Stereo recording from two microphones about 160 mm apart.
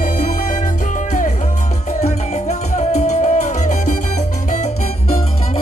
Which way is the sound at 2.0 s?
45° left (ahead or behind).